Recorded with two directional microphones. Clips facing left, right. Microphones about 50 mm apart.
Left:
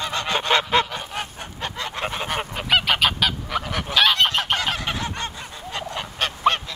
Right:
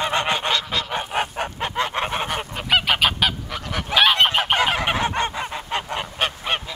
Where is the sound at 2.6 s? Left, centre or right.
Centre; by 5.3 s right.